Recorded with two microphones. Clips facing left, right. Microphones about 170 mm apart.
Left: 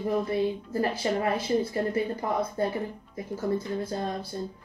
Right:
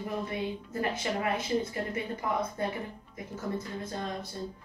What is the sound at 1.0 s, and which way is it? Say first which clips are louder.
Speech: left 5 dB; 30° left (ahead or behind).